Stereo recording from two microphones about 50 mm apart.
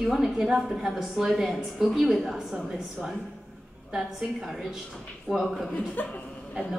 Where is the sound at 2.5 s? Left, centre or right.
Centre.